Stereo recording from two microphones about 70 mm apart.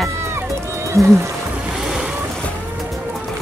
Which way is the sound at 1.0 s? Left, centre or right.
Right.